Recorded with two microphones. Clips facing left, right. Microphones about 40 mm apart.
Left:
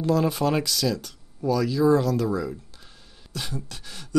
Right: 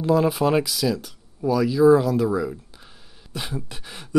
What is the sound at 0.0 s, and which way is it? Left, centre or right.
Speech, centre.